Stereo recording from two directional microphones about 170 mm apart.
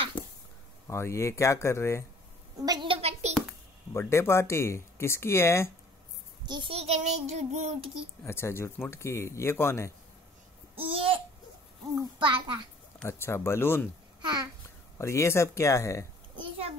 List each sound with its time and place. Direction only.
0.8 s speech: 15° left (ahead or behind)
2.6 s a sound: 25° right (ahead or behind)
3.9 s speech: 15° left (ahead or behind)
6.4 s child singing: 30° right (ahead or behind)
8.2 s speech: 15° left (ahead or behind)
11.9 s a child's voice: 25° right (ahead or behind)
13.0 s speech: 15° left (ahead or behind)
14.2 s a child's voice: 25° right (ahead or behind)
15.0 s a child's voice: 15° left (ahead or behind)